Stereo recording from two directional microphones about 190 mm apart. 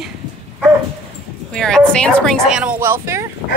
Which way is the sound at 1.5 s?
5° left (ahead or behind).